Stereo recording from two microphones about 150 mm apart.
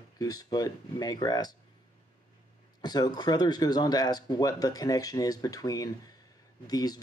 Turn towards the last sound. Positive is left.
turn(degrees=25)  # may be behind; listen again after turning